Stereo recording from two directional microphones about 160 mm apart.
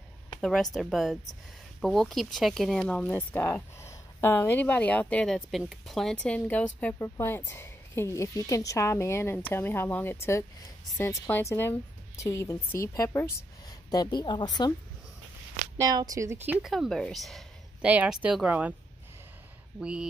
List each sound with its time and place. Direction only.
0.4 s speech: 5° left (ahead or behind); by 14.5 s 25° left (ahead or behind)
15.8 s speech: 25° right (ahead or behind)
16.7 s speech: centre (ahead or behind)
19.8 s speech: 5° right (ahead or behind)